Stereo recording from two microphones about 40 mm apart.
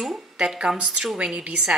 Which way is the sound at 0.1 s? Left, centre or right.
Centre.